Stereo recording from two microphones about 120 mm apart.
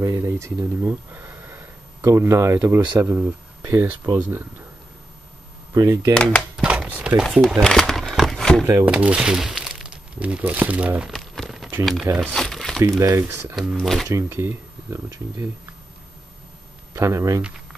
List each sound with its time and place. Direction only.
0.0 s speech: 25° right (ahead or behind)
0.8 s a sound: 15° right (ahead or behind)
2.0 s speech: 25° right (ahead or behind)
5.7 s speech: 25° right (ahead or behind)
6.1 s speech: 5° left (ahead or behind)
6.9 s speech: 10° right (ahead or behind)
7.6 s a sound: 5° left (ahead or behind)
8.8 s speech: 10° right (ahead or behind)
12.3 s crumpling: 5° left (ahead or behind)
12.8 s speech: 25° right (ahead or behind)
13.6 s speech: centre (ahead or behind)
14.0 s speech: 25° right (ahead or behind)
16.9 s speech: 25° right (ahead or behind)